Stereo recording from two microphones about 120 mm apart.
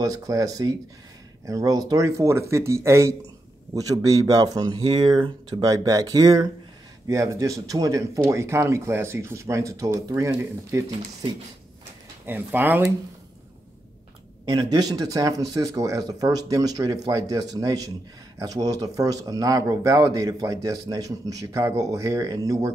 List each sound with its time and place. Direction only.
0.0 s speech: 30° right (ahead or behind)
12.3 s speech: 15° right (ahead or behind)
14.5 s speech: 30° right (ahead or behind)